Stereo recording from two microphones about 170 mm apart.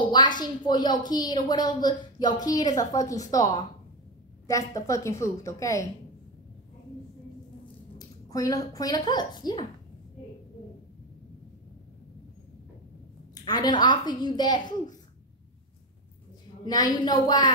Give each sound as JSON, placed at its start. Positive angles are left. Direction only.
{"t": 0.0, "sound": "a woman's voice", "side_deg": 25}
{"t": 4.5, "sound": "a woman's voice", "side_deg": 20}
{"t": 8.3, "sound": "a woman's voice", "side_deg": 20}
{"t": 13.3, "sound": "a woman's voice", "side_deg": 25}
{"t": 16.6, "sound": "a woman's voice", "side_deg": 25}